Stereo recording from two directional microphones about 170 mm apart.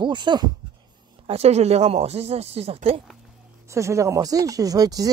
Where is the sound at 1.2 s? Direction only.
35° right (ahead or behind).